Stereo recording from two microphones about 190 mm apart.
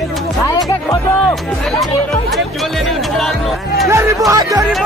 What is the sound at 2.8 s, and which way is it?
Speech, centre (ahead or behind).